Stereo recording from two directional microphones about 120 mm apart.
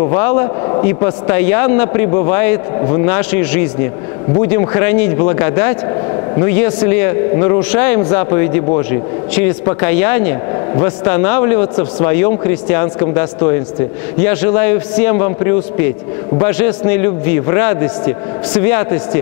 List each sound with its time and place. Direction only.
0.0 s a man's voice: 25° left (ahead or behind)